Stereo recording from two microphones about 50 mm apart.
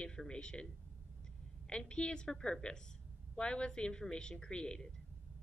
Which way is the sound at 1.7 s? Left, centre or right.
Centre.